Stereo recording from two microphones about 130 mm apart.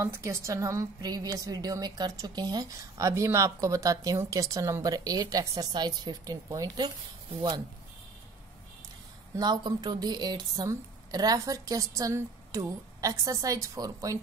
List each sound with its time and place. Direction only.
0.0 s a woman's voice: 20° right (ahead or behind)
9.4 s a woman's voice: 30° right (ahead or behind)